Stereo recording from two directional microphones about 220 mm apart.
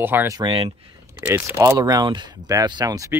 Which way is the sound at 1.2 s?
10° right (ahead or behind).